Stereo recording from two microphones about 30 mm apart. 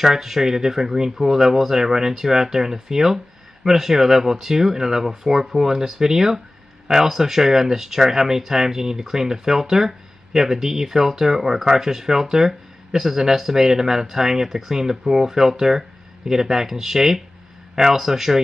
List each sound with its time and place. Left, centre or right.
0.0 s speech: centre